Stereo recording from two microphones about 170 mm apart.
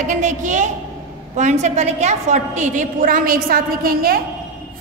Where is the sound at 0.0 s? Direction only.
45° right (ahead or behind).